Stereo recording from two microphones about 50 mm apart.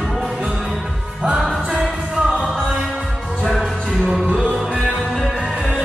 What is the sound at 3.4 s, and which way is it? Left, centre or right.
Music, centre.